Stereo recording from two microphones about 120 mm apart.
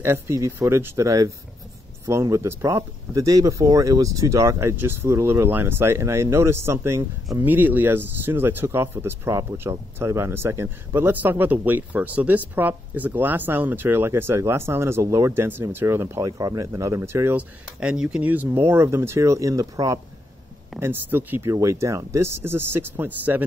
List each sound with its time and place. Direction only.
0.0 s speech: 20° right (ahead or behind)
17.7 s speech: 10° right (ahead or behind); by 20.0 s 30° right (ahead or behind)
20.8 s speech: 15° right (ahead or behind)